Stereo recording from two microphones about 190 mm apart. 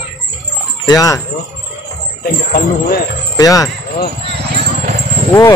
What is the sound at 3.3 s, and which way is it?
Speech, 20° left (ahead or behind).